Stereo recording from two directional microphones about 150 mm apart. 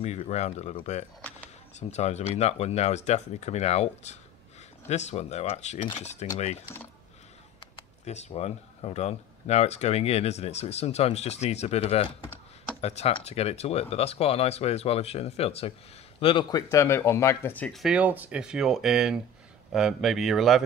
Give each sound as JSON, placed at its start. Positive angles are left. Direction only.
{"t": 0.0, "sound": "speech", "side_deg": 45}
{"t": 1.8, "sound": "speech", "side_deg": 50}
{"t": 8.0, "sound": "speech", "side_deg": 50}